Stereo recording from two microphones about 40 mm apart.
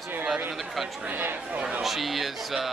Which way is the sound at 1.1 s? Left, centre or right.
Right.